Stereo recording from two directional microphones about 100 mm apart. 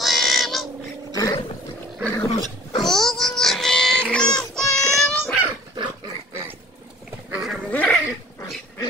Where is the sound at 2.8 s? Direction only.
5° left (ahead or behind).